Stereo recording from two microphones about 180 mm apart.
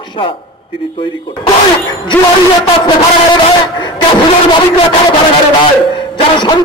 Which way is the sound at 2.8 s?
25° left (ahead or behind).